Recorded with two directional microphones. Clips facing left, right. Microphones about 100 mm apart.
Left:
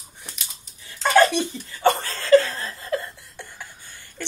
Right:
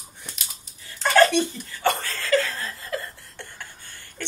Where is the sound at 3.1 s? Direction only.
10° left (ahead or behind).